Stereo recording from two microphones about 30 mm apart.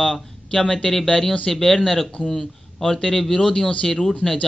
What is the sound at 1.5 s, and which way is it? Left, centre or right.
Speech, centre.